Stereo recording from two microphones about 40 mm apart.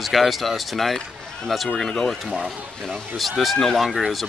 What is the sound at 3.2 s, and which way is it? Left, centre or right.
Speech, centre.